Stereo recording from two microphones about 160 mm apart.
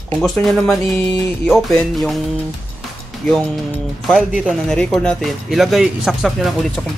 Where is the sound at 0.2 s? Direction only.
Centre (ahead or behind).